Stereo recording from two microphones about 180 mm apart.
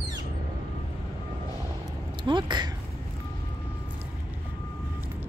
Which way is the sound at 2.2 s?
25° right (ahead or behind).